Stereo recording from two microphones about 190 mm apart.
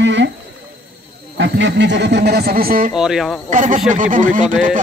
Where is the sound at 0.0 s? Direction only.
75° right (ahead or behind).